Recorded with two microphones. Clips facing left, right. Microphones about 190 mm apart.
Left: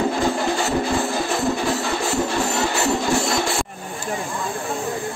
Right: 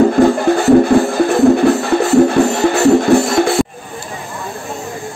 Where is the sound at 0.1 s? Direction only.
55° right (ahead or behind).